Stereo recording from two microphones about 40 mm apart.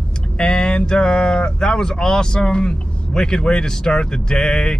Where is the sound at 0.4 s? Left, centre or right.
Left.